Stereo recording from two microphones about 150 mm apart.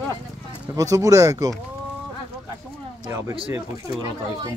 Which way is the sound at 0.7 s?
20° right (ahead or behind).